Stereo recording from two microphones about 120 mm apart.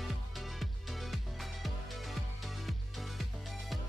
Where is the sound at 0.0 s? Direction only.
Centre (ahead or behind).